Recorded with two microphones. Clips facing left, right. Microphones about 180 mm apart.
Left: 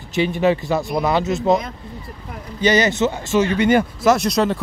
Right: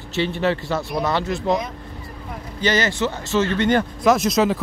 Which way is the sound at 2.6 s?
15° left (ahead or behind).